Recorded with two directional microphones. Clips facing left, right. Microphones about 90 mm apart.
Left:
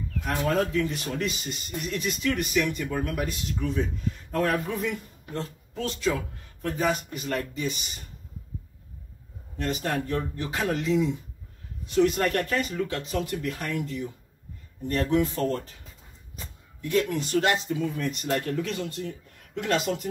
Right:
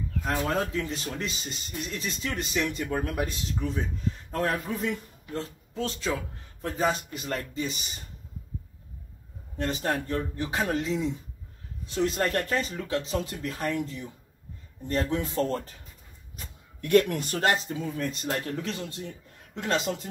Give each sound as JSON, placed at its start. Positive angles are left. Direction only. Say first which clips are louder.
{"t": 0.5, "sound": "a man's voice", "louder": "left 4 dB", "side_deg": -30}
{"t": 5.8, "sound": "speech", "louder": "left 2 dB", "side_deg": -35}
{"t": 9.6, "sound": "speech", "louder": "even", "side_deg": -30}
{"t": 16.8, "sound": "a man's voice", "louder": "right 3 dB", "side_deg": -60}